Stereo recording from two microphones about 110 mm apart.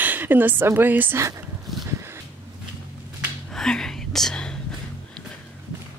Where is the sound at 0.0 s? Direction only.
15° right (ahead or behind).